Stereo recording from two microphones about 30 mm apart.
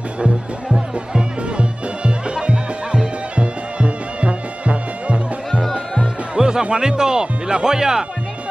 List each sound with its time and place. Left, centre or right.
1.6 s music: right
6.3 s speech: right